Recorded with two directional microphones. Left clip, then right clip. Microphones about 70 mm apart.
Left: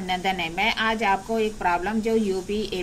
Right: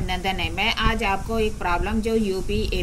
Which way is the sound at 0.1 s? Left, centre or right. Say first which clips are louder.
Left 1 dB; centre.